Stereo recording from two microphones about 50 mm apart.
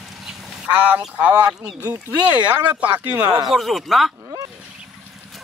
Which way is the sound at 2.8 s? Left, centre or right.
Right.